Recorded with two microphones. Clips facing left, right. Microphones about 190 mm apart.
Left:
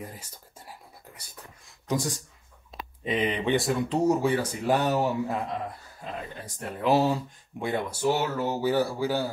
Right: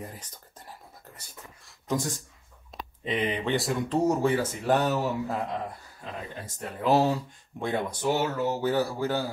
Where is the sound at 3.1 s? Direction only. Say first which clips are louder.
Left 2 dB; 15° left (ahead or behind).